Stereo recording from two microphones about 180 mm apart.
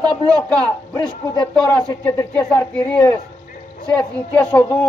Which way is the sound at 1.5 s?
5° left (ahead or behind).